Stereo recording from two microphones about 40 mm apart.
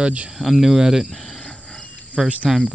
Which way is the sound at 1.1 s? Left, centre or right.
Centre.